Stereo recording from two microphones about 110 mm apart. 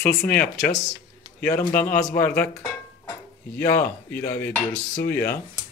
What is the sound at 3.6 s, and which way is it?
Dishes, 20° left (ahead or behind).